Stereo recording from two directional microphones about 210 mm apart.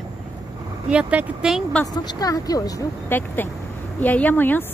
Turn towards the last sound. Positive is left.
turn(degrees=10)  # may be behind; listen again after turning